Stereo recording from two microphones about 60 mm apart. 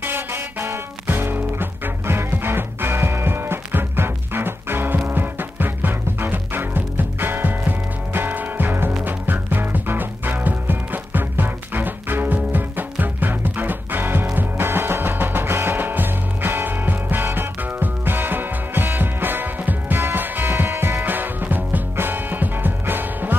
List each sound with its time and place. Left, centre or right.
0.0 s music: right
21.0 s music: right